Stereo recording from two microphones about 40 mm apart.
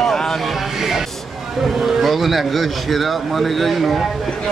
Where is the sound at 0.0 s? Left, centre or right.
Centre.